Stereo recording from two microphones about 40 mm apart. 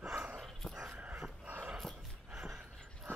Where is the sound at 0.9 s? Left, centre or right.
Right.